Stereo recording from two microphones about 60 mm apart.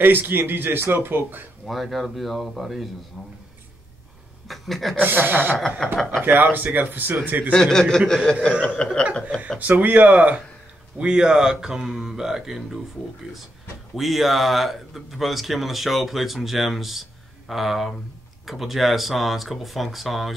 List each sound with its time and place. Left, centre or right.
0.0 s speech: right
1.7 s speech: centre
3.1 s speech: centre
4.5 s chuckle: centre
5.0 s speech: right
5.8 s speech: centre
6.1 s speech: right
7.5 s speech: centre
9.6 s speech: right; by 12.8 s centre
13.9 s speech: centre